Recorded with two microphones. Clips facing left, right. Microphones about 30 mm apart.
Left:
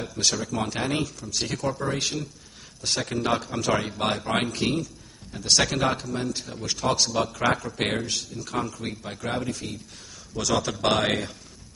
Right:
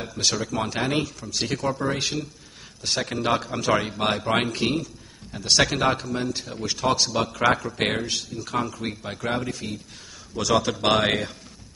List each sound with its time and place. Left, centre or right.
0.0 s a man's voice: centre